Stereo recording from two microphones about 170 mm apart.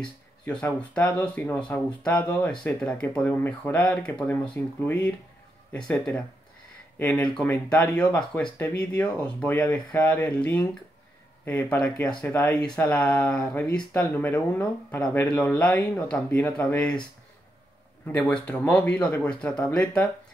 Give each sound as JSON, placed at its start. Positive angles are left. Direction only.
{"t": 0.0, "sound": "speech", "side_deg": 5}
{"t": 18.0, "sound": "speech", "side_deg": 10}